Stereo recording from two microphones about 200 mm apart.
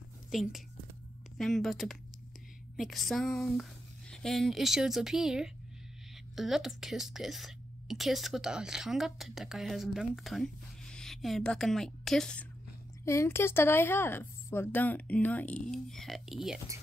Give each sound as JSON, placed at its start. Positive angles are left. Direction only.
{"t": 0.3, "sound": "a woman's voice", "side_deg": 0}
{"t": 13.0, "sound": "a woman's voice", "side_deg": 15}